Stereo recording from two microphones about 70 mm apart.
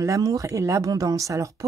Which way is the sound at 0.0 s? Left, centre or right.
Right.